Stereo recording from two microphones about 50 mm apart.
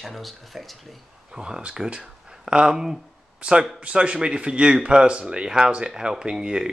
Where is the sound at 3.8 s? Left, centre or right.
Right.